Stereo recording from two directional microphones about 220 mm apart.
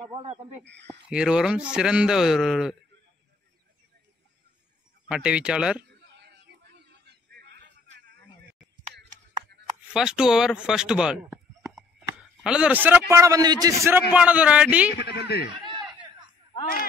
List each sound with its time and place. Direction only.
0.1 s speech: 25° right (ahead or behind)
0.7 s speech: 50° right (ahead or behind)
1.1 s a man's voice: 5° right (ahead or behind)
5.0 s a man's voice: 5° right (ahead or behind)
6.1 s a sound: 50° right (ahead or behind)
9.9 s a man's voice: 5° right (ahead or behind)
12.4 s a man's voice: 5° right (ahead or behind)
15.0 s speech: 50° left (ahead or behind)
15.5 s a sound: 20° right (ahead or behind)